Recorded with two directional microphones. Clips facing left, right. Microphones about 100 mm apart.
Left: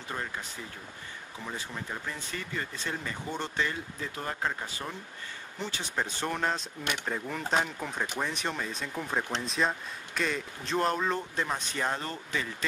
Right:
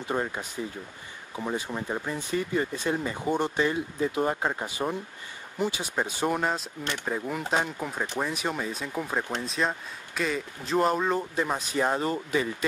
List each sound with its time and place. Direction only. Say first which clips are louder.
0.1 s speech: right 7 dB; 25° right (ahead or behind)